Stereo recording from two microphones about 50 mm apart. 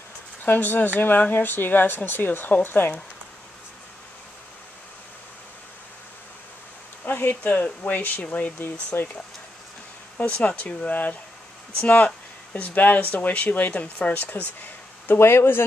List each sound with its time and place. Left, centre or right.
0.5 s speech: left
7.1 s speech: left
8.9 s speech: left
10.1 s speech: left
12.5 s speech: left
15.1 s speech: left